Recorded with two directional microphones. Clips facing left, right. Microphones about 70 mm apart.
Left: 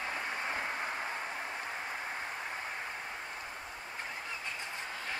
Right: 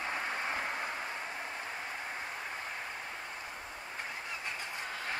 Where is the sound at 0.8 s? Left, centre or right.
Centre.